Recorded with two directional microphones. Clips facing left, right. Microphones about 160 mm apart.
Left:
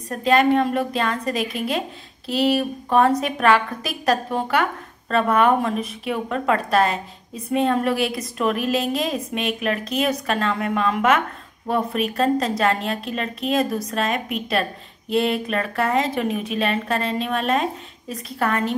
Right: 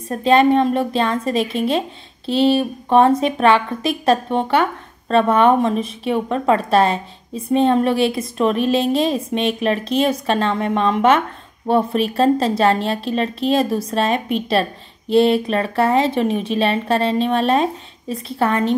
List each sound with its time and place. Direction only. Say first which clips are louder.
0.1 s a woman's voice: right 4 dB; 25° right (ahead or behind)